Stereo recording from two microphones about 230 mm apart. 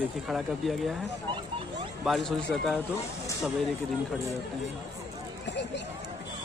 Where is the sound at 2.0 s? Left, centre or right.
Centre.